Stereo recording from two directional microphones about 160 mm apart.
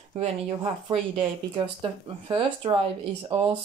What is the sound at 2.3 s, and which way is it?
Speech, 30° right (ahead or behind).